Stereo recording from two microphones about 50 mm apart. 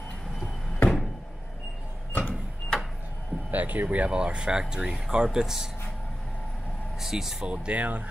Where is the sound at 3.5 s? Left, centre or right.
Right.